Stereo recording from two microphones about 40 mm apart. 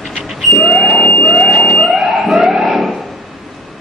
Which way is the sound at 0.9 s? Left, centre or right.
Left.